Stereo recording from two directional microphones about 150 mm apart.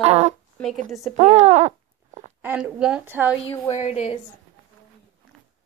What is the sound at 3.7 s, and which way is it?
Speech, 45° left (ahead or behind).